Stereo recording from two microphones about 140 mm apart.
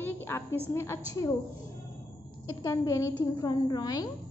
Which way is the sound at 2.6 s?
20° left (ahead or behind).